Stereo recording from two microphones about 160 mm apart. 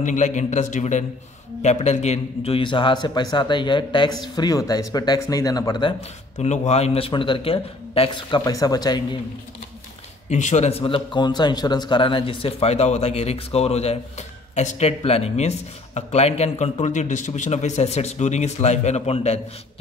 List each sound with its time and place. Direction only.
0.0 s a man's voice: 50° left (ahead or behind); by 5.9 s 30° left (ahead or behind)
6.3 s a man's voice: 45° left (ahead or behind); by 9.0 s 25° left (ahead or behind)
10.3 s a man's voice: 45° left (ahead or behind)